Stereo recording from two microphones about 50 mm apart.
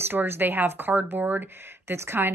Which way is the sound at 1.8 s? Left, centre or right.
Right.